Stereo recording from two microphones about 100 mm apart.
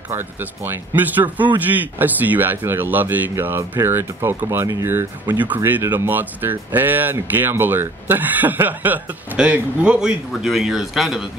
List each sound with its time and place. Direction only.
0.1 s speech: 20° right (ahead or behind)
5.4 s speech: 20° right (ahead or behind)